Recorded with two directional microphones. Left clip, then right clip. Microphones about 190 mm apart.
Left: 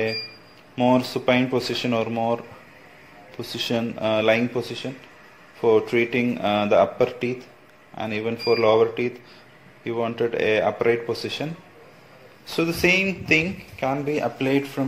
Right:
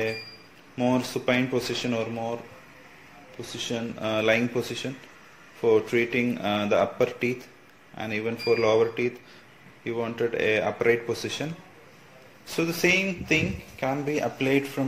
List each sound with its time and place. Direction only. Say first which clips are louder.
0.7 s speech: left 6 dB; centre (ahead or behind)
3.3 s speech: left 6 dB; 20° left (ahead or behind)
3.9 s speech: left 3 dB; centre (ahead or behind)
4.6 s speech: left 2 dB; 10° right (ahead or behind)
5.6 s speech: left 3 dB; centre (ahead or behind)